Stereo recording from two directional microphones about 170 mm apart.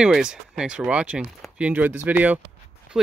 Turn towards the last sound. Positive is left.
turn(degrees=-5)  # may be behind; listen again after turning